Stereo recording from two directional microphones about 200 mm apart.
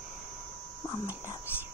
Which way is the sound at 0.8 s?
15° left (ahead or behind).